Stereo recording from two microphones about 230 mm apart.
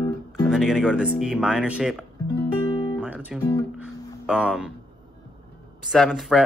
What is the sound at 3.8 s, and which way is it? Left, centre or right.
Speech, centre.